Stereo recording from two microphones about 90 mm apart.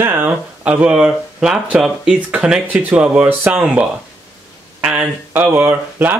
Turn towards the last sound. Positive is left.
turn(degrees=-20)  # may be behind; listen again after turning